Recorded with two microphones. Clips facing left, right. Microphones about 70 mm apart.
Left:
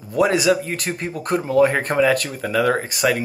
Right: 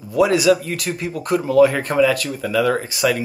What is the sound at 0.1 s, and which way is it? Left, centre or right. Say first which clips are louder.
Speech: right 2 dB; left.